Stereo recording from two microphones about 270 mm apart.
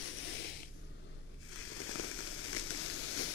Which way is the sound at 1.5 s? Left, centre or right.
Left.